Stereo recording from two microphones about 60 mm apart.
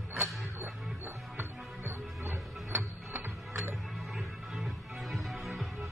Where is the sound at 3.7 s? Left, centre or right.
Centre.